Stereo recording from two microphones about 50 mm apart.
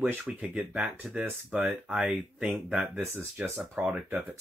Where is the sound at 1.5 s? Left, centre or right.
Right.